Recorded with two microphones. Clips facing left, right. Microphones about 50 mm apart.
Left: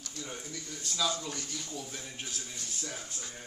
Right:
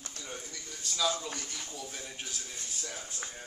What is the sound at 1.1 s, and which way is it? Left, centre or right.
Speech, right.